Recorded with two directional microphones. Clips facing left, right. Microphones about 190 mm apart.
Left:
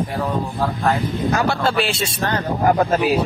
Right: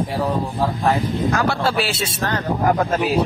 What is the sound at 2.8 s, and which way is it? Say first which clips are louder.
Speech: left 2 dB; 10° left (ahead or behind).